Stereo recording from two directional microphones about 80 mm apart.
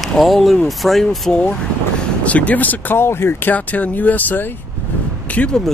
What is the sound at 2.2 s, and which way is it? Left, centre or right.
Speech, centre.